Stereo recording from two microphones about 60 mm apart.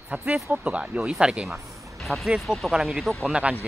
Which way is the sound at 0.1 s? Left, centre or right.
Right.